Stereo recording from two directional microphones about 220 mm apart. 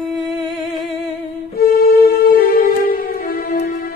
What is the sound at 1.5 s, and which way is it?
Music, 45° left (ahead or behind).